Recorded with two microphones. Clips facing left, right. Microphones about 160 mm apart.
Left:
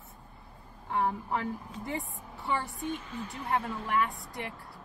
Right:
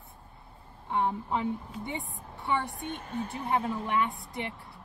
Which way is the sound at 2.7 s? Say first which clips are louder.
Left 2 dB; 55° right (ahead or behind).